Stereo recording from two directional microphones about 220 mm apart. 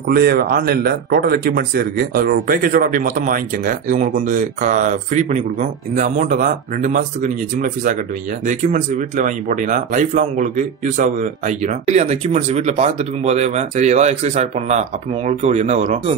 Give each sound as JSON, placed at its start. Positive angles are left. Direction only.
{"t": 0.1, "sound": "speech", "side_deg": -45}